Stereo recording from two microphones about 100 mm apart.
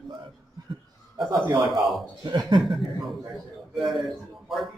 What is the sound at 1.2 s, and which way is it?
A man's voice, 50° right (ahead or behind).